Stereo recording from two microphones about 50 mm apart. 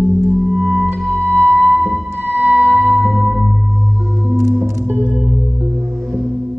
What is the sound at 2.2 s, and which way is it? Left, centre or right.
Music, right.